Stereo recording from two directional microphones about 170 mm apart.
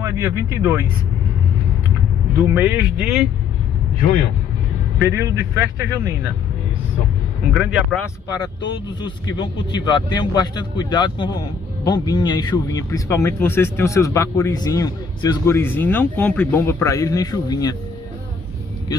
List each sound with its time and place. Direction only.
0.0 s speech: 20° right (ahead or behind)
2.3 s speech: 15° right (ahead or behind)
4.9 s speech: 20° right (ahead or behind)
7.5 s speech: centre (ahead or behind)
8.0 s speech: 25° left (ahead or behind)